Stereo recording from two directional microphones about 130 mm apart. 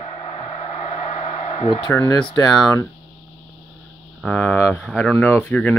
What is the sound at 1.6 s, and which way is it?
Speech, 40° left (ahead or behind).